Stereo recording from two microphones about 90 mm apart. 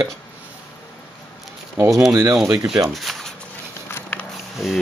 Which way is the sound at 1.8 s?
35° right (ahead or behind).